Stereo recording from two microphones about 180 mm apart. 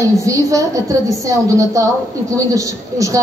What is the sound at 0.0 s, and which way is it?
A woman's voice, 15° right (ahead or behind).